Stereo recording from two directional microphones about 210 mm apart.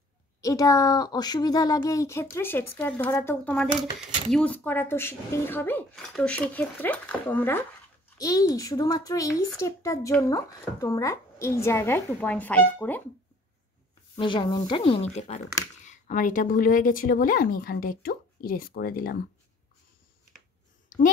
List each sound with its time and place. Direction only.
0.4 s speech: 15° left (ahead or behind)
14.1 s speech: 20° left (ahead or behind); by 19.2 s 45° left (ahead or behind)